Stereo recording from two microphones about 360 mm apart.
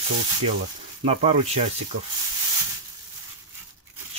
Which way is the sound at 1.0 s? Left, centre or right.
Centre.